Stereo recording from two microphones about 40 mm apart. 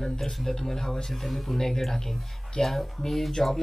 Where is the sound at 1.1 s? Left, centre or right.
Centre.